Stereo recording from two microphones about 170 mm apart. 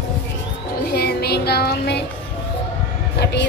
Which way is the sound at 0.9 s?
70° left (ahead or behind).